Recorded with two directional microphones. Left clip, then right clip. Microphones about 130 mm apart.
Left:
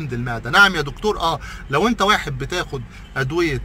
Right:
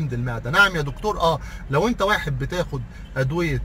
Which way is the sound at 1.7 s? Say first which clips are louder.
Left 3 dB; 25° left (ahead or behind).